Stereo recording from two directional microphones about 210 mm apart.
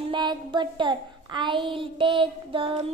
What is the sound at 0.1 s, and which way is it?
Child singing, 20° right (ahead or behind).